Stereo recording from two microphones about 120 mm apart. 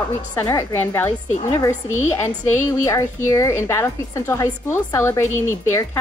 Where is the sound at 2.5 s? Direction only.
25° left (ahead or behind).